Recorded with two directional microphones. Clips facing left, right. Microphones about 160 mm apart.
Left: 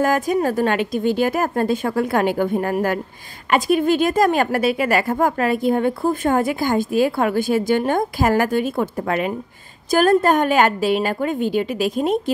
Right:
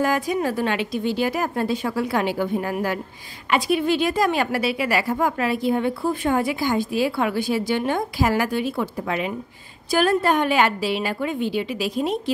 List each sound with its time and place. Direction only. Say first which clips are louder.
0.0 s a woman's voice: left 4 dB; 45° left (ahead or behind)